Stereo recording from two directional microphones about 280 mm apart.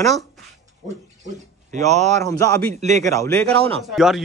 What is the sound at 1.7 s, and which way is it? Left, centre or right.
Speech, right.